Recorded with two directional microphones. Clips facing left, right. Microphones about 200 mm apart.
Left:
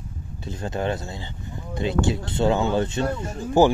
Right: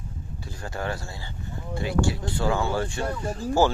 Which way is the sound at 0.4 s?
20° left (ahead or behind).